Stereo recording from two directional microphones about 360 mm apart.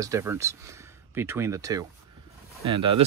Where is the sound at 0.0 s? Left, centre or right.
Centre.